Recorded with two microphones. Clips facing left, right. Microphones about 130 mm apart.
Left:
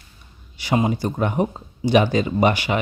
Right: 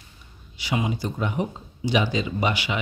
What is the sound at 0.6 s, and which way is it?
Speech, 45° left (ahead or behind).